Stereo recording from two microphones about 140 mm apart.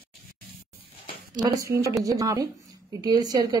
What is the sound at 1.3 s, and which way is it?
Speech, 25° right (ahead or behind).